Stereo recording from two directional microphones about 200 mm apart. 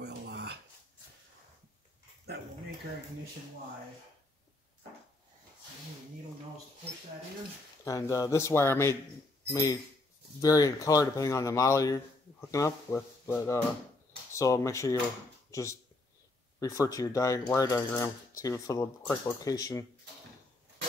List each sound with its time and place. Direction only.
0.0 s dog: 55° right (ahead or behind)
7.8 s speech: 15° left (ahead or behind)
16.5 s speech: 15° left (ahead or behind)